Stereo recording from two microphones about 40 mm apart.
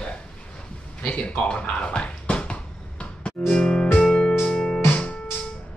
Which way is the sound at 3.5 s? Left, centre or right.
Left.